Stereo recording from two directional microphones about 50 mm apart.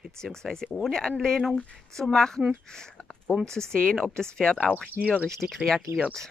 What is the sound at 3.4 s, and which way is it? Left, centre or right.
Speech, centre.